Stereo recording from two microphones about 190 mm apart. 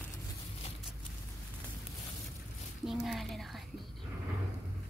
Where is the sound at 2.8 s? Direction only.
Centre (ahead or behind).